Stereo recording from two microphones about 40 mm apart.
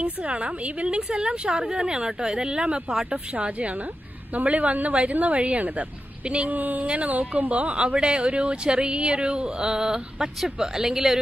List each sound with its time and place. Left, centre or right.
0.0 s a woman's voice: right
6.5 s a sound: right
6.9 s a woman's voice: right; by 11.1 s centre